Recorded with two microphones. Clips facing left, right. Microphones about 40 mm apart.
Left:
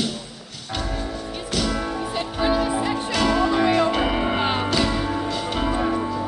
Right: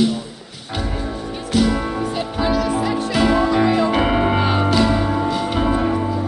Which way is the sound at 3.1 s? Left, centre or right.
Centre.